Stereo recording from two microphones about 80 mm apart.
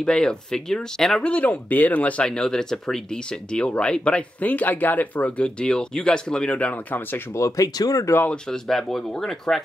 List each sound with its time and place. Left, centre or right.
0.0 s speech: centre
1.3 s speech: centre
7.3 s speech: left
8.3 s speech: centre